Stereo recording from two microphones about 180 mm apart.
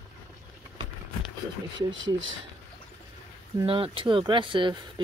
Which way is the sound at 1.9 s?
90° right.